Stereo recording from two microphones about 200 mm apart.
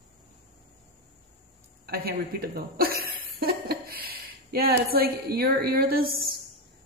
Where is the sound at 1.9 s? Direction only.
50° right (ahead or behind).